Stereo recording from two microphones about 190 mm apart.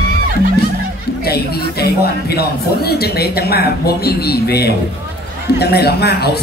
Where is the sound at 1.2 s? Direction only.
55° left (ahead or behind).